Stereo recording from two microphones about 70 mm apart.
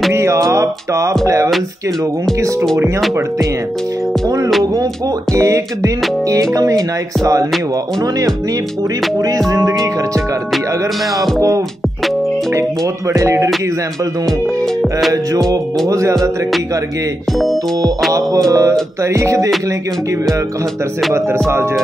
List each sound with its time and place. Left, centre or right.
0.1 s music: right
5.3 s music: right
6.5 s speech: right
9.5 s music: right
11.1 s music: centre
13.1 s music: right
14.8 s music: centre
15.9 s music: right
17.3 s music: centre
18.5 s music: right